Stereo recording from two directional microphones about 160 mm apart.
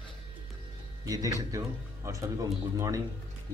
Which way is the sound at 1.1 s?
20° right (ahead or behind).